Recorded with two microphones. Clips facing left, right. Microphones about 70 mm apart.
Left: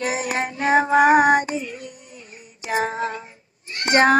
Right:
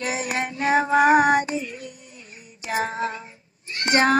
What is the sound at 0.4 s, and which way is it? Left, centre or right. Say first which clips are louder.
Child singing: left 2 dB; left.